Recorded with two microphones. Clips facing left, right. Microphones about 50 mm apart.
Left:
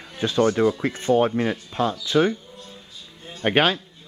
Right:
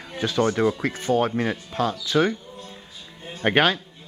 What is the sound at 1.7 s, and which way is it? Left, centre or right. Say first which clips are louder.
Speech: even; left.